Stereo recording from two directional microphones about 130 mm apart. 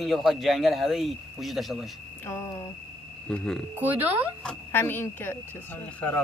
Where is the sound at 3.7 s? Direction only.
15° right (ahead or behind).